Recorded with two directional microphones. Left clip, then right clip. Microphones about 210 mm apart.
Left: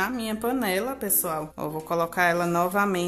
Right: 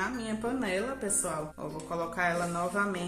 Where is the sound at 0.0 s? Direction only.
45° left (ahead or behind).